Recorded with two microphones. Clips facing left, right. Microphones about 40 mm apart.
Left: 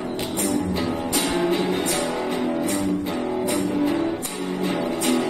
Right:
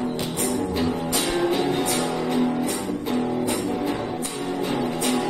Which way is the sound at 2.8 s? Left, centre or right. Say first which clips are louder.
Left 1 dB; left.